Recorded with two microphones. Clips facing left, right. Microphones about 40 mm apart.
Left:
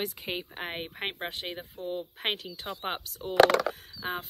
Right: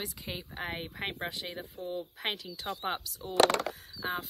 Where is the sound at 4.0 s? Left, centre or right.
Right.